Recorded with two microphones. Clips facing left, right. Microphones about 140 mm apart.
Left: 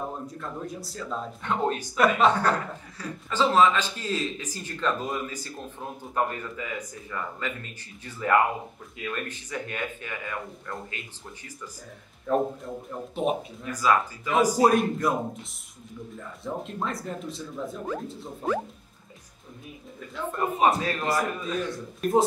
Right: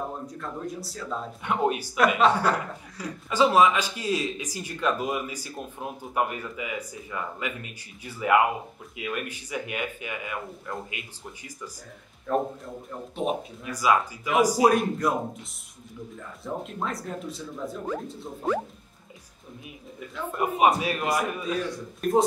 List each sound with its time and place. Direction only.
0.3 s speech: centre (ahead or behind)
1.4 s a man's voice: 10° right (ahead or behind)
12.3 s speech: centre (ahead or behind)
13.7 s a man's voice: 10° right (ahead or behind)
14.7 s speech: centre (ahead or behind)
16.2 s speech: centre (ahead or behind)
20.3 s a man's voice: 10° right (ahead or behind)